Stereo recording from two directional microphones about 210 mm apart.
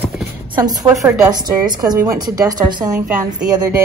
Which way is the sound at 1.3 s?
20° right (ahead or behind).